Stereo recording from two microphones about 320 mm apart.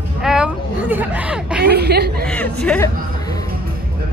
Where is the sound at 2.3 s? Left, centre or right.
Centre.